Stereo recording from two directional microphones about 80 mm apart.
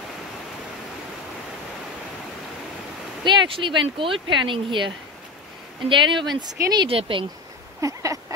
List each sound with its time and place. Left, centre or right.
3.3 s speech: right
6.3 s speech: right
7.8 s a sound: right